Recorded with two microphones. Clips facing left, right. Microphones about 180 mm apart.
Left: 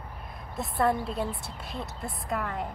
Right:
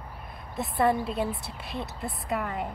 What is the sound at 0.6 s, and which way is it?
Speech, centre (ahead or behind).